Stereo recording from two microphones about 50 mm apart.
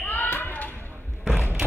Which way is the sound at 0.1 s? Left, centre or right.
Left.